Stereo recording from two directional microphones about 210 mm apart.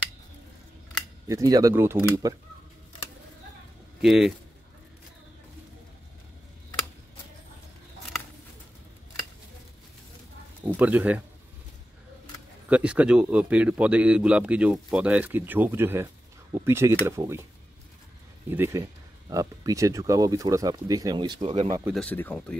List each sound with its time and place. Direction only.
1.3 s speech: 15° right (ahead or behind)
4.0 s speech: centre (ahead or behind)
10.8 s speech: 5° right (ahead or behind)
12.6 s a man's voice: 5° right (ahead or behind)
18.5 s speech: 10° right (ahead or behind)
21.8 s a man's voice: 5° left (ahead or behind)